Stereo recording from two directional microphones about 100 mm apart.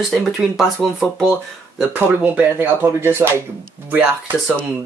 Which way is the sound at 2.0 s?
15° right (ahead or behind).